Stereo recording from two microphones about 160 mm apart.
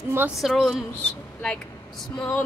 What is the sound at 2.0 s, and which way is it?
Speech, 5° left (ahead or behind).